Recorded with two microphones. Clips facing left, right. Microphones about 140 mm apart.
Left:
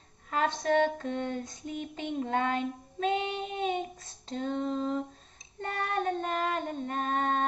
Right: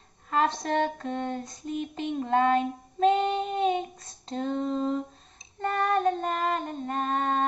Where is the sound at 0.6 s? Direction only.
40° right (ahead or behind).